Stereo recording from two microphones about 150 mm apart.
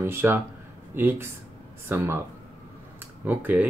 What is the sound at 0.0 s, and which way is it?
Speech, 15° right (ahead or behind).